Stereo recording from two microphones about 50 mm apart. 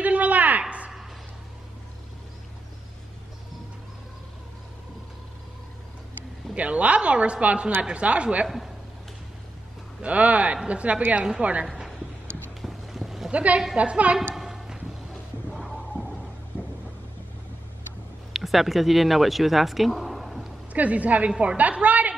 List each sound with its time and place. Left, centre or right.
0.0 s a sound: right
6.5 s a woman's voice: right
10.0 s a woman's voice: right
11.6 s a woman's voice: centre
12.6 s boat: centre
13.3 s a woman's voice: right
14.3 s a sound: centre
16.5 s a sound: left
18.3 s speech: centre
20.7 s a woman's voice: right